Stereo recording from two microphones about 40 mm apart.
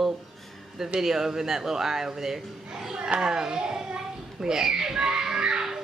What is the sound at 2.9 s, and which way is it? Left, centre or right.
Speech, right.